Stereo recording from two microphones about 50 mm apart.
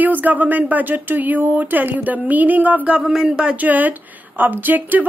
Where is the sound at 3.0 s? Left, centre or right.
Centre.